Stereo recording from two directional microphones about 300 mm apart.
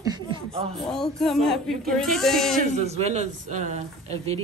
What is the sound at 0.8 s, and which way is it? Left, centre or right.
Speech, centre.